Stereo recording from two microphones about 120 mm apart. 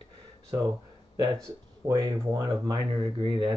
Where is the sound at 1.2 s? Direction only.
30° right (ahead or behind).